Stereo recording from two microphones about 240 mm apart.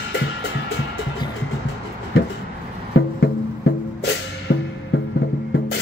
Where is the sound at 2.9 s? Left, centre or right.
Left.